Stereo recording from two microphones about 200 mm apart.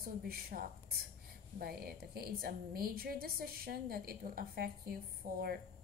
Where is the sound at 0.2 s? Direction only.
50° right (ahead or behind).